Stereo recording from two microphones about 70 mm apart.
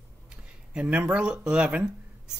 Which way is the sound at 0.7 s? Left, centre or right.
Right.